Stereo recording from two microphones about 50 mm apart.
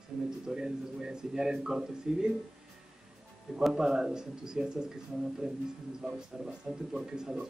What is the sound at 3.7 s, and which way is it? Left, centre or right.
A man's voice, centre.